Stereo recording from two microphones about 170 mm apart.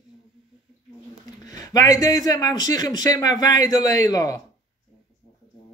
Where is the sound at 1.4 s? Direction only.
20° left (ahead or behind).